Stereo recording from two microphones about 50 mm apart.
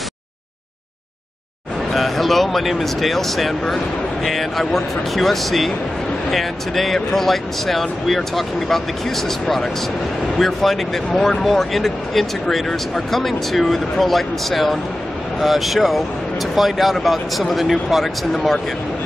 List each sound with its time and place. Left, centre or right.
1.9 s speech: centre